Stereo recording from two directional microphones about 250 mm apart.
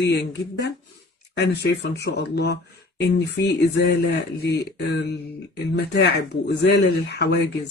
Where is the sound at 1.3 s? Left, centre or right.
Left.